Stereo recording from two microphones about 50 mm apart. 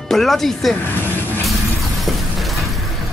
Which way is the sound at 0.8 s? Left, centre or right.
Left.